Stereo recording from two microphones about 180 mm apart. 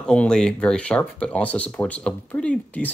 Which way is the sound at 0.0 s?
5° left (ahead or behind).